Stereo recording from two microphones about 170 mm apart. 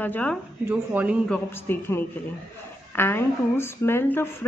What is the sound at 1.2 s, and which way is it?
A man's voice, 10° left (ahead or behind).